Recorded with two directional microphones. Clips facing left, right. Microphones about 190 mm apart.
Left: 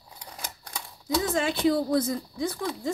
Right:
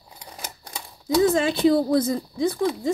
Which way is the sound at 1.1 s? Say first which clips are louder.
Right 7 dB; 30° right (ahead or behind).